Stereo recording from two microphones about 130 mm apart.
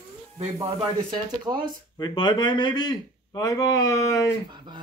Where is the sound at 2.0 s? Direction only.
35° left (ahead or behind).